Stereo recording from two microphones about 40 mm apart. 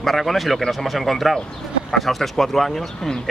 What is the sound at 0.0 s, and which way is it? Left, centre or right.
Speech, centre.